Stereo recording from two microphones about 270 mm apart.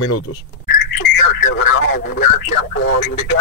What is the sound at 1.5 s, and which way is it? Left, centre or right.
Radio, left.